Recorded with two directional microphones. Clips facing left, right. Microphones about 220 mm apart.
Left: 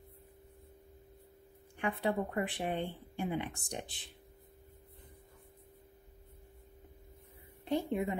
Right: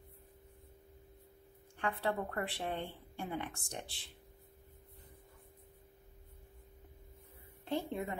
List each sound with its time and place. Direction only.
1.8 s speech: 15° left (ahead or behind)
7.6 s a woman's voice: 15° left (ahead or behind)